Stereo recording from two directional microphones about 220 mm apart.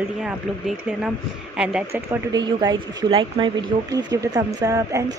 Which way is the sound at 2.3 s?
20° right (ahead or behind).